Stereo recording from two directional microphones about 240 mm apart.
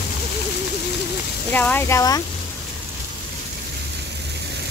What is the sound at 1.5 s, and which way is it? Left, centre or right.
Speech, centre.